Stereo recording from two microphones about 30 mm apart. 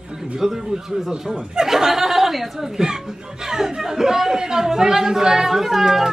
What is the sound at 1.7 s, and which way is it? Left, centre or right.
Speech, centre.